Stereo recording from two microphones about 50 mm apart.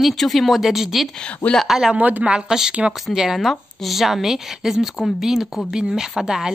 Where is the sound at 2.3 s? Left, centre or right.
Centre.